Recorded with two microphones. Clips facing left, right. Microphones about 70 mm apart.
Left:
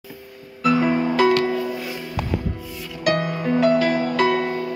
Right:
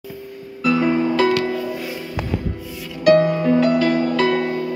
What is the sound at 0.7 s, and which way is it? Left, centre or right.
Music, centre.